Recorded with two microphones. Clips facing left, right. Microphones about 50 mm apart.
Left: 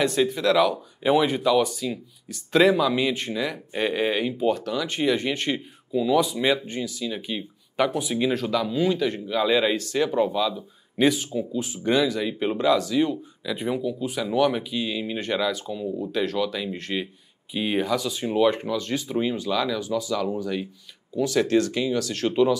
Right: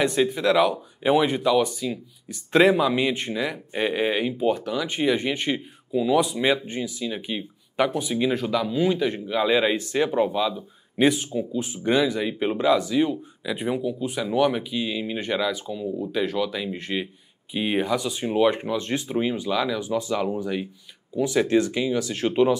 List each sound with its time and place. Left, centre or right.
0.0 s speech: centre
2.2 s speech: right
19.1 s speech: centre
19.9 s speech: right
20.2 s speech: centre